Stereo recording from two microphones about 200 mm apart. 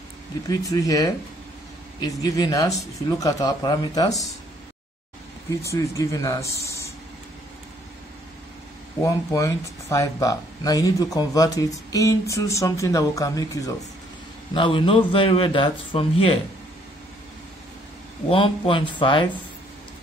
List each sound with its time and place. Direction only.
0.5 s a man's voice: 15° left (ahead or behind)
5.7 s speech: 15° left (ahead or behind)
9.0 s a man's voice: 15° left (ahead or behind)
18.3 s a man's voice: 25° left (ahead or behind)